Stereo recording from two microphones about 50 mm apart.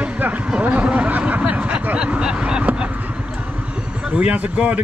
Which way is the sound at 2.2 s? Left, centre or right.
Centre.